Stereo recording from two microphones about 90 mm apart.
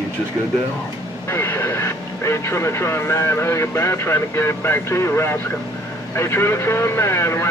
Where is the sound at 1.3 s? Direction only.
30° left (ahead or behind).